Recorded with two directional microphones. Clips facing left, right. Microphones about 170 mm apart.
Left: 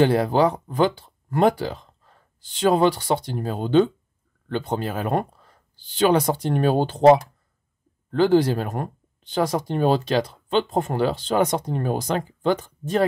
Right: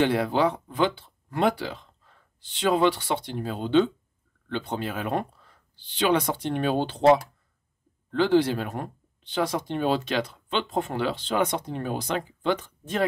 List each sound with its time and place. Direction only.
0.0 s speech: 40° left (ahead or behind)